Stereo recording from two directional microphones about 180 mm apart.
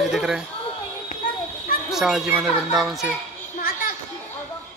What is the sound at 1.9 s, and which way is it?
A child's voice, centre (ahead or behind).